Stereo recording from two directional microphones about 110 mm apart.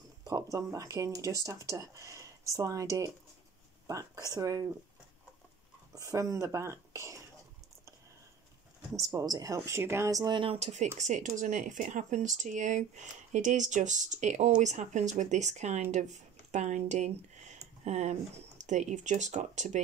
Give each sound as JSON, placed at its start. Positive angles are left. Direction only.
{"t": 0.2, "sound": "speech", "side_deg": -35}
{"t": 5.9, "sound": "speech", "side_deg": -30}
{"t": 9.0, "sound": "speech", "side_deg": -35}
{"t": 10.2, "sound": "speech", "side_deg": -50}
{"t": 10.6, "sound": "speech", "side_deg": -90}